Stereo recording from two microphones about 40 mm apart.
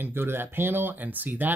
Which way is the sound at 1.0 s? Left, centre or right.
Right.